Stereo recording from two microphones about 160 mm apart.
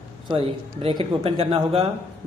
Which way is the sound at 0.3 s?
30° right (ahead or behind).